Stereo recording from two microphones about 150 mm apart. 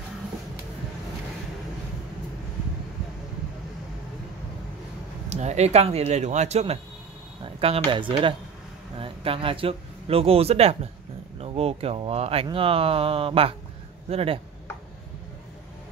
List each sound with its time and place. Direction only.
5.3 s speech: 50° right (ahead or behind)